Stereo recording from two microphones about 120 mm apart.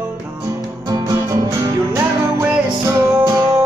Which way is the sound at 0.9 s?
30° right (ahead or behind).